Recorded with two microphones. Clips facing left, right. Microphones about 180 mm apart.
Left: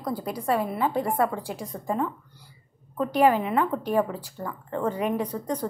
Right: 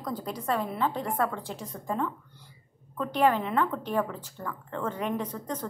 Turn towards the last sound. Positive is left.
turn(degrees=10)  # may be behind; listen again after turning